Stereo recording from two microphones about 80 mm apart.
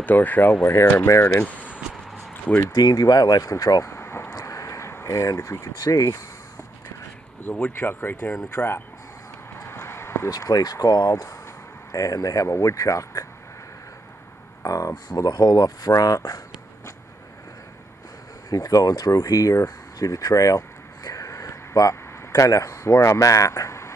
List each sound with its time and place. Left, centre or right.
0.0 s speech: left
1.3 s speech: centre
2.7 s speech: left
3.9 s vehicle: left
4.4 s speech: left
7.4 s speech: left
9.6 s a sound: left
10.4 s speech: left
14.6 s speech: left
18.5 s speech: left